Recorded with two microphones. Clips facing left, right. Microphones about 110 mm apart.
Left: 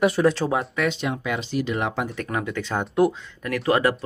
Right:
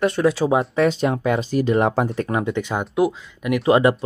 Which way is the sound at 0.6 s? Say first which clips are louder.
Right 6 dB; 35° right (ahead or behind).